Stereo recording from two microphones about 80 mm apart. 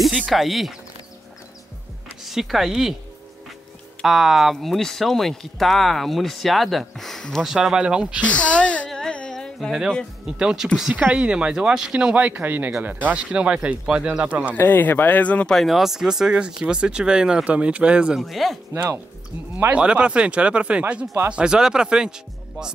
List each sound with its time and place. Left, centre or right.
0.3 s speech: centre
2.2 s speech: centre
4.0 s speech: centre
7.4 s speech: centre
8.2 s a sound: centre
10.2 s speech: centre
14.5 s speech: left
15.5 s speech: centre
18.2 s speech: centre
19.5 s speech: centre